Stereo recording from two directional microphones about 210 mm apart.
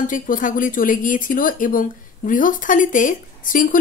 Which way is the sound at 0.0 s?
40° left (ahead or behind).